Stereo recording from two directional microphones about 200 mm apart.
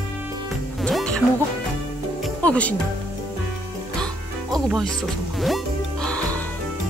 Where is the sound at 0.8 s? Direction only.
5° left (ahead or behind).